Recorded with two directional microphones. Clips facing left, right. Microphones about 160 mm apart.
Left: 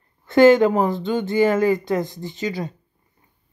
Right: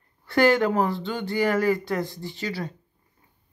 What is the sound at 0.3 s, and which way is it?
Speech, 20° left (ahead or behind).